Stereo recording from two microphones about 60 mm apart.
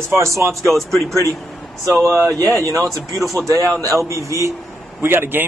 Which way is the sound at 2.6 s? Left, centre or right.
Right.